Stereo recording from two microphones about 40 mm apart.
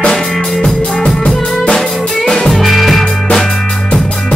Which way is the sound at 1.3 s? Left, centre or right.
Centre.